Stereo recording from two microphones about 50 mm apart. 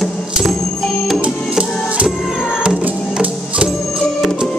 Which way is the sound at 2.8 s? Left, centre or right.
Right.